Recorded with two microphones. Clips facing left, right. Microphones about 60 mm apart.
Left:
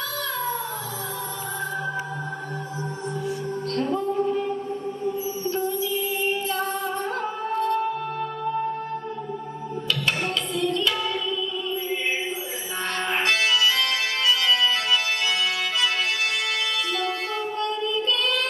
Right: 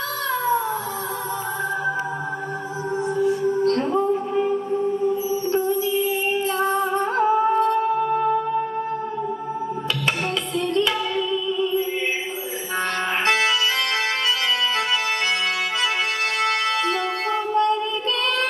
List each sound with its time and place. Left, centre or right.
4.3 s music: centre
5.0 s music: right
13.2 s music: right
16.4 s music: right